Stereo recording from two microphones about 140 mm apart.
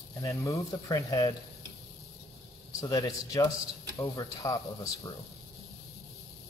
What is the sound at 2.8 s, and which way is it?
Speech, 25° left (ahead or behind).